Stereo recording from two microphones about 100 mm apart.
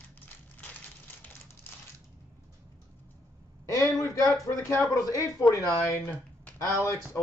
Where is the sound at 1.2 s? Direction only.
20° left (ahead or behind).